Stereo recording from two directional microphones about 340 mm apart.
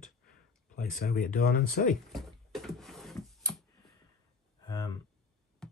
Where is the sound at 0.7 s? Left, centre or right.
Left.